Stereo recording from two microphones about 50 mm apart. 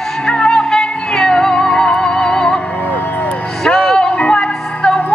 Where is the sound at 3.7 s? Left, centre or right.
Centre.